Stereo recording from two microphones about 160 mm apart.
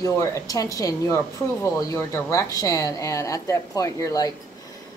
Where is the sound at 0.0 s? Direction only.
20° left (ahead or behind).